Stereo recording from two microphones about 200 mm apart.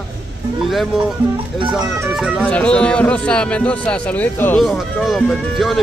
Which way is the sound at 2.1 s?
5° right (ahead or behind).